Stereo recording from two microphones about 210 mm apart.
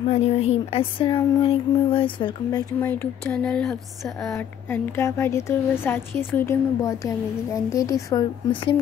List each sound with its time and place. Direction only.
0.1 s speech: 30° left (ahead or behind)
2.8 s a woman's voice: 10° left (ahead or behind)